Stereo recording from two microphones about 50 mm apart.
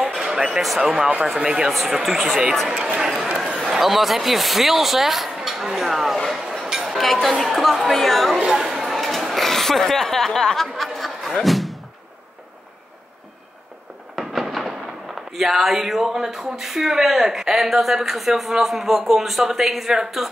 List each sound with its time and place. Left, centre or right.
0.0 s speech: centre
2.7 s speech: right
3.0 s speech: centre
6.5 s a sound: centre
7.0 s speech: centre
8.4 s speech: centre
8.8 s a sound: centre
10.8 s slam: centre
14.1 s speech: centre